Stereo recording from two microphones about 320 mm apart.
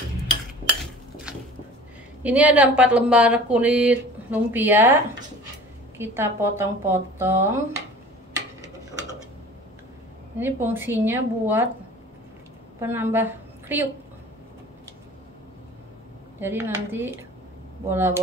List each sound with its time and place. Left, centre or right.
2.2 s speech: centre
5.9 s a woman's voice: centre
10.4 s a woman's voice: centre
12.8 s a woman's voice: centre
16.3 s a woman's voice: centre